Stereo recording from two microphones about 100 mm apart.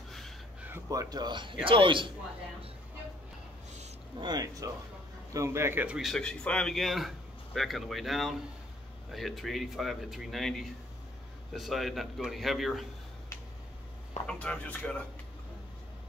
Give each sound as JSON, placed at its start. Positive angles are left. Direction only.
{"t": 0.8, "sound": "speech", "side_deg": -40}
{"t": 4.2, "sound": "speech", "side_deg": -45}
{"t": 5.3, "sound": "a man's voice", "side_deg": -30}
{"t": 5.9, "sound": "speech", "side_deg": -5}
{"t": 6.2, "sound": "speech", "side_deg": 10}
{"t": 14.2, "sound": "speech", "side_deg": 10}